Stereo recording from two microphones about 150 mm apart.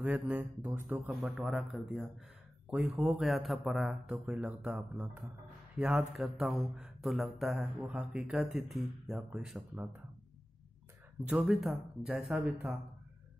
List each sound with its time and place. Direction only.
0.0 s speech: 10° right (ahead or behind)
1.3 s speech: centre (ahead or behind)
11.2 s speech: 5° right (ahead or behind)